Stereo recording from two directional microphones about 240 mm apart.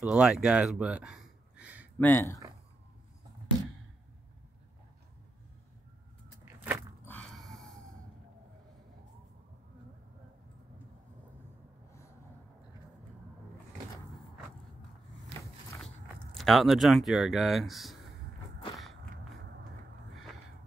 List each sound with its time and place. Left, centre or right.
0.0 s speech: centre
2.0 s speech: centre
6.4 s keys jangling: centre
7.1 s a sound: centre
16.3 s speech: centre